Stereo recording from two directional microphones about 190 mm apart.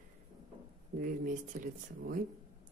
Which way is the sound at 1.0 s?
45° right (ahead or behind).